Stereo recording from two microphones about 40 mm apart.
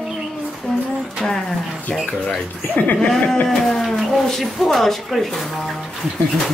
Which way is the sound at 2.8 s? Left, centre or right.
Left.